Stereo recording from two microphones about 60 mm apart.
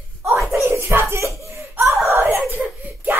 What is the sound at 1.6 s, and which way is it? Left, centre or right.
Gasp, right.